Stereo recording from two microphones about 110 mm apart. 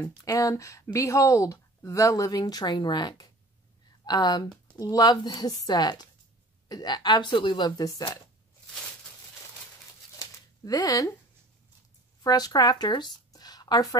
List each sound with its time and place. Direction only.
0.2 s speech: 30° left (ahead or behind)
10.1 s a sound: 35° left (ahead or behind)
12.2 s speech: 35° left (ahead or behind)